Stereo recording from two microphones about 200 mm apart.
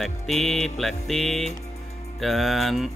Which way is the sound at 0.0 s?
Centre (ahead or behind).